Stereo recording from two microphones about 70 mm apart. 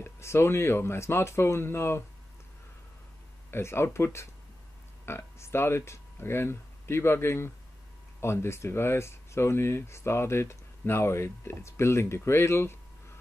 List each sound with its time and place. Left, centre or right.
0.0 s speech: left
3.5 s speech: left